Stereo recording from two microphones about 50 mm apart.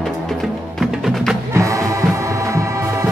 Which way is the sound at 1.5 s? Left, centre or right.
Right.